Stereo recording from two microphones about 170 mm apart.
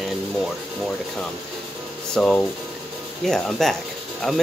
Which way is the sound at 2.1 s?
5° left (ahead or behind).